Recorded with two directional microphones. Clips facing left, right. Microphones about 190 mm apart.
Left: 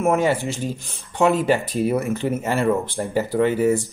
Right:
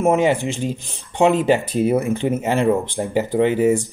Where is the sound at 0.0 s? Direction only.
15° right (ahead or behind).